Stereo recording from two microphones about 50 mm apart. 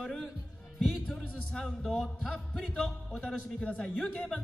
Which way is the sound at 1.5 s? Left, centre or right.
Centre.